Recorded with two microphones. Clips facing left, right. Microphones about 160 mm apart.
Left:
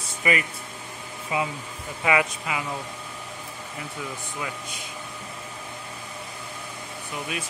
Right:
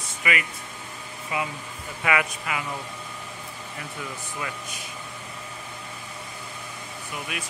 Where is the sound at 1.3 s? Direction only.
20° left (ahead or behind).